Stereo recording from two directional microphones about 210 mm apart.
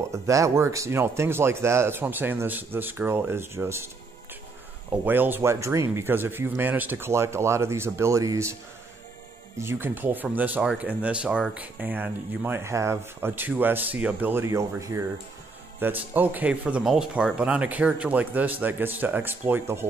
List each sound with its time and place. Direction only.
0.1 s speech: 15° right (ahead or behind)
5.0 s speech: 10° right (ahead or behind)
9.6 s speech: 10° right (ahead or behind)